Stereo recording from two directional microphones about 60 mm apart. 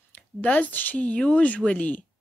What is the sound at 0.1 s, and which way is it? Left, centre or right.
Speech, left.